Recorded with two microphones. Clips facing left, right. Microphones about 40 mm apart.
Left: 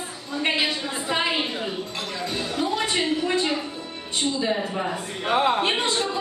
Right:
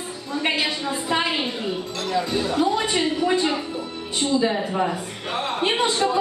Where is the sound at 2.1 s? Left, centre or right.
Centre.